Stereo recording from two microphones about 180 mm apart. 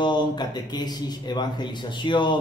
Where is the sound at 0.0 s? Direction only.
25° left (ahead or behind).